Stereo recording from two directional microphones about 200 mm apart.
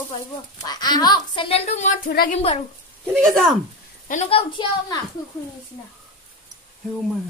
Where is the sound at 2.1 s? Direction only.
45° left (ahead or behind).